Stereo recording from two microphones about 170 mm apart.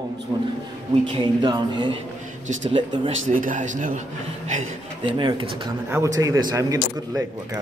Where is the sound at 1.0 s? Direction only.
25° right (ahead or behind).